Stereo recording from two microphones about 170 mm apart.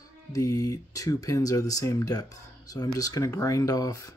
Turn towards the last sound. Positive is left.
turn(degrees=20)  # may be behind; listen again after turning